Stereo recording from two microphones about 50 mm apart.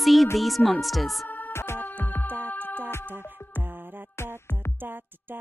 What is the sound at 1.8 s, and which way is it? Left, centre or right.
Music, left.